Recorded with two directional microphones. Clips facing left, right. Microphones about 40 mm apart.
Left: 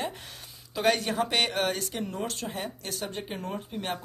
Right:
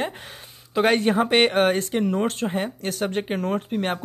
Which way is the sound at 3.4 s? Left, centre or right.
Right.